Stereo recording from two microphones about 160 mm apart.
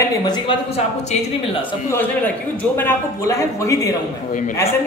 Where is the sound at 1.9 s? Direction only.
10° left (ahead or behind).